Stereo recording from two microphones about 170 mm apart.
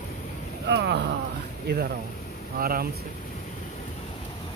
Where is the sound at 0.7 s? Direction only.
75° right (ahead or behind).